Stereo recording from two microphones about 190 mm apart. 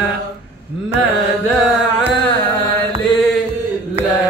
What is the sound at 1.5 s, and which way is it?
Carnatic music, centre (ahead or behind).